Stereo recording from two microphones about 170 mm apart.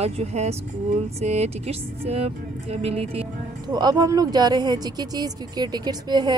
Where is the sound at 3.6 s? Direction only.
25° right (ahead or behind).